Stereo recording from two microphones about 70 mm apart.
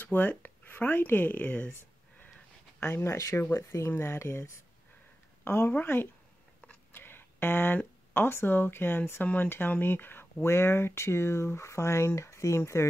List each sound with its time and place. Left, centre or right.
0.0 s speech: left
2.8 s speech: left